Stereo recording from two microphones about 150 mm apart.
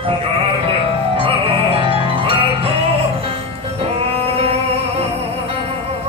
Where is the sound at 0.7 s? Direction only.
40° right (ahead or behind).